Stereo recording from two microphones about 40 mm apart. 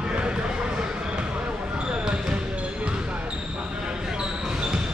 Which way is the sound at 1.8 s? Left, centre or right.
Right.